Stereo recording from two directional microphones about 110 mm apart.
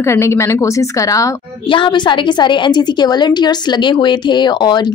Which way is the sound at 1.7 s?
50° left (ahead or behind).